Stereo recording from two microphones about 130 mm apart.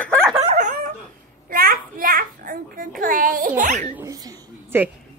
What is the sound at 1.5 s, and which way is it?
A child's voice, 90° right.